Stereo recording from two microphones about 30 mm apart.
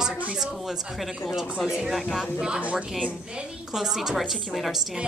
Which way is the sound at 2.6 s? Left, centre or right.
Right.